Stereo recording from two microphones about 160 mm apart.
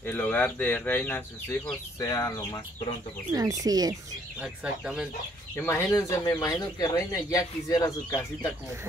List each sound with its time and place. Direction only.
0.0 s speech: 15° left (ahead or behind)
3.6 s speech: 25° right (ahead or behind)
4.4 s speech: 5° right (ahead or behind)
5.6 s speech: 15° left (ahead or behind)